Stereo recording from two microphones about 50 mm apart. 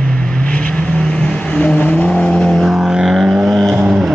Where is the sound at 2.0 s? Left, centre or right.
Left.